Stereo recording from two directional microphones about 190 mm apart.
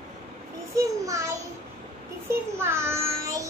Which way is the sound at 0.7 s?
15° right (ahead or behind).